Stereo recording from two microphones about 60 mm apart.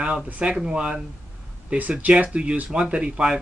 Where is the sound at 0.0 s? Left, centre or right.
Centre.